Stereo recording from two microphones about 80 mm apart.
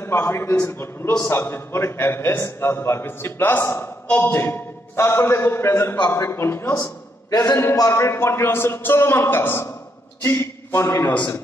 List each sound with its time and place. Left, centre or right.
0.0 s a man's voice: left